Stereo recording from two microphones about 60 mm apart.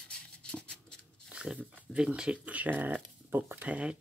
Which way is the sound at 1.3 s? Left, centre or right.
Centre.